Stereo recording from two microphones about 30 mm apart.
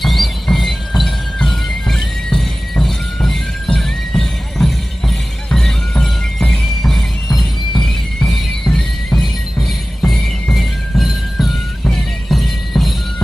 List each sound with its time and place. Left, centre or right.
0.0 s music: centre